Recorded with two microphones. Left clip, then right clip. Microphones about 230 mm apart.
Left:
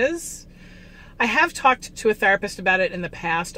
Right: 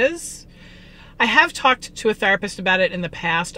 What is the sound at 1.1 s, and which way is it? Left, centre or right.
Speech, centre.